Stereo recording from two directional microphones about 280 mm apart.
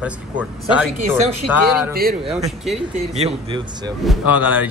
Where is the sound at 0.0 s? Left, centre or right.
Centre.